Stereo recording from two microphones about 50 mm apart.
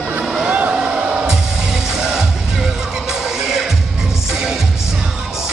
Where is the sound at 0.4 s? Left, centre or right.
Right.